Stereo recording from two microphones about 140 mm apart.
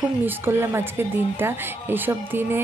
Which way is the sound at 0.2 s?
15° right (ahead or behind).